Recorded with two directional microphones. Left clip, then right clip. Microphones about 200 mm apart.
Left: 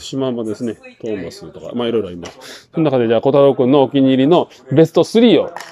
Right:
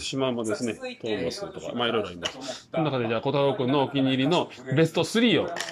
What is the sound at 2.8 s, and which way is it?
Speech, 40° left (ahead or behind).